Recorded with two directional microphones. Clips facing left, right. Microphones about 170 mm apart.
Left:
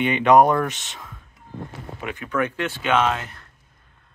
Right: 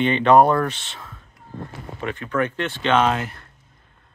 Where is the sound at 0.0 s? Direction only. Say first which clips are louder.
Right 1 dB; 10° left (ahead or behind).